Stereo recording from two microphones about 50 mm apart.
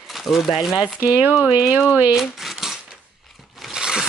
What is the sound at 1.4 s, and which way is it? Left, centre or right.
Speech, right.